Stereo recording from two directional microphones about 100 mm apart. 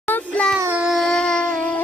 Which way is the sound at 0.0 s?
15° left (ahead or behind).